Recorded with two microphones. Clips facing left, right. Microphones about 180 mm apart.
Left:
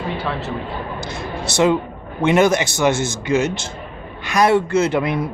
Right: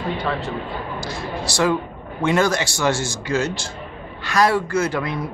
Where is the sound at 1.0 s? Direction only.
20° left (ahead or behind).